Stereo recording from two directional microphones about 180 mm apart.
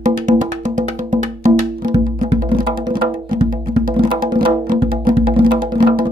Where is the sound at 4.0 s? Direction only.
25° right (ahead or behind).